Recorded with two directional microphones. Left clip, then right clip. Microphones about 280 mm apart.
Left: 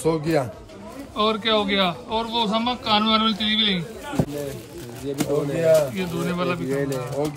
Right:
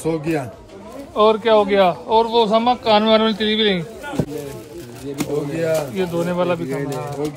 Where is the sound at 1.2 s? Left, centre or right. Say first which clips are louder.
Right 7 dB; centre.